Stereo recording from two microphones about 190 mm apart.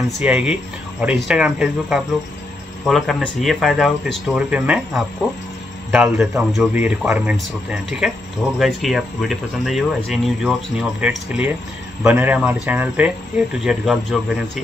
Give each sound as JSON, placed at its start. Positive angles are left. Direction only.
{"t": 0.2, "sound": "speech", "side_deg": -5}